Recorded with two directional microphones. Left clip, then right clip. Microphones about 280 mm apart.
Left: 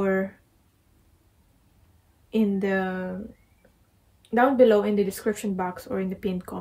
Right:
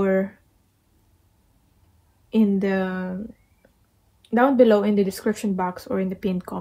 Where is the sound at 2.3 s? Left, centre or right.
Centre.